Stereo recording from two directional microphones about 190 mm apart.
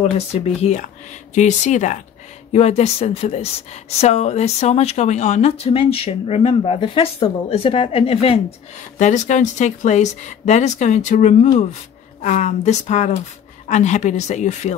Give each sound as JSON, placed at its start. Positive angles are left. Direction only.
{"t": 0.6, "sound": "speech", "side_deg": 35}